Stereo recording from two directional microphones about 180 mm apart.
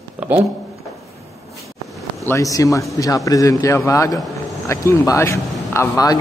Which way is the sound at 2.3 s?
20° left (ahead or behind).